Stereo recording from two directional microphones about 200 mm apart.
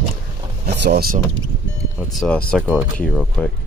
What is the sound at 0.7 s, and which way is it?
Speech, 55° right (ahead or behind).